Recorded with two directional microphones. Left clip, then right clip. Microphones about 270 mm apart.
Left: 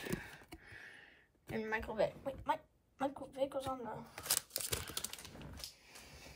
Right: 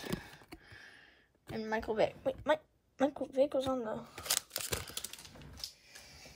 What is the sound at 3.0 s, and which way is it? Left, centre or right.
Speech, centre.